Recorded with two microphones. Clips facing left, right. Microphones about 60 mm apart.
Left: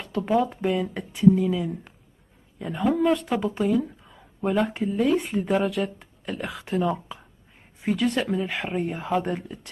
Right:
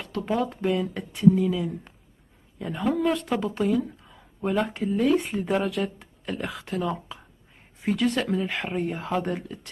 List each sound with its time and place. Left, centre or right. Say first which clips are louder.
0.3 s speech: left 2 dB; centre